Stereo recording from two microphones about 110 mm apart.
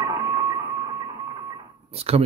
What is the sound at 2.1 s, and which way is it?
Speech, 65° right (ahead or behind).